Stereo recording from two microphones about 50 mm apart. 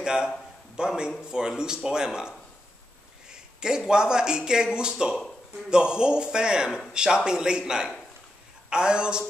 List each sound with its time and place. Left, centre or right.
0.0 s a man's voice: centre